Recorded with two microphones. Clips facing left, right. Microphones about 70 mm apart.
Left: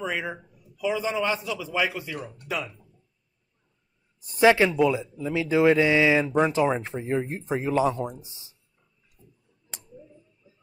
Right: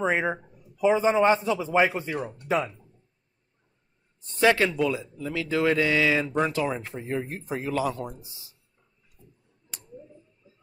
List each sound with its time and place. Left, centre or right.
0.0 s a man's voice: right
4.4 s speech: centre
8.3 s a sound: left
9.2 s tick-tock: right